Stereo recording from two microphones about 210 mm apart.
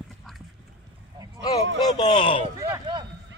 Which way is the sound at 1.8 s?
20° left (ahead or behind).